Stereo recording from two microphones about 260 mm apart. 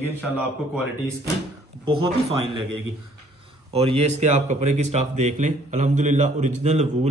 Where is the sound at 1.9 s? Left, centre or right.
Centre.